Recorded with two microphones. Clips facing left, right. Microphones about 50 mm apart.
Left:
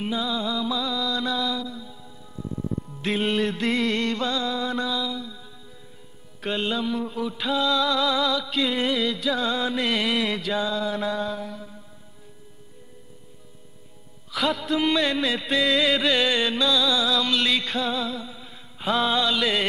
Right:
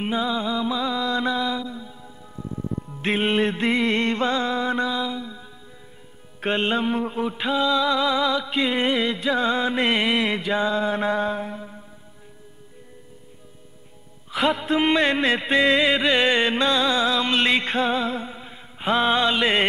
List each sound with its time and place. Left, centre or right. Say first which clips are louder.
0.0 s music: right 3 dB; right
6.4 s music: right 4 dB; right
14.3 s music: right 3 dB; right